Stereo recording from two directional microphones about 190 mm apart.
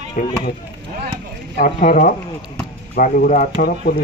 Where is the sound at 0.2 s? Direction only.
40° left (ahead or behind).